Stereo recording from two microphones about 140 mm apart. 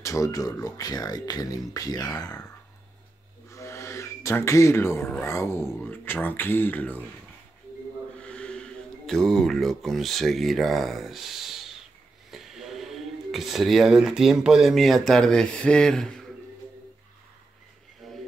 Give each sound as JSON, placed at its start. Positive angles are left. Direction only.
{"t": 0.0, "sound": "speech", "side_deg": 20}
{"t": 3.4, "sound": "gasp", "side_deg": 20}
{"t": 5.2, "sound": "speech", "side_deg": 20}
{"t": 8.2, "sound": "speech", "side_deg": 5}
{"t": 18.0, "sound": "music", "side_deg": 0}